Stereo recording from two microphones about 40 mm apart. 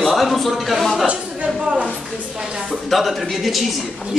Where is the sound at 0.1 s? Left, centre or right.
Centre.